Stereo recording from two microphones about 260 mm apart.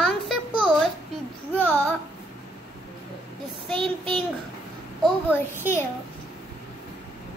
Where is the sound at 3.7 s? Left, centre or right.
Centre.